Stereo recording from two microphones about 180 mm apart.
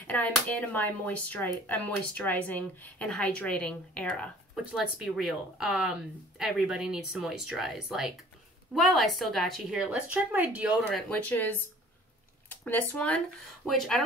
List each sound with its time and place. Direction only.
0.0 s speech: 10° left (ahead or behind)